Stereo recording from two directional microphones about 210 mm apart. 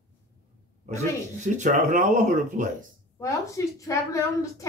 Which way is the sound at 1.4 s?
35° right (ahead or behind).